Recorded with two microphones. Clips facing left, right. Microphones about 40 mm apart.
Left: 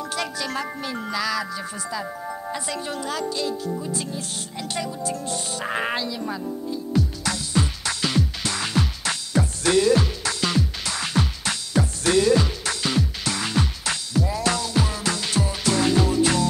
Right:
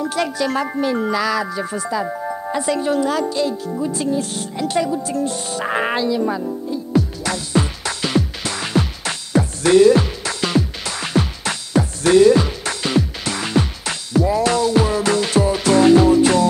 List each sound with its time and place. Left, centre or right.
0.0 s speech: right
3.8 s music: right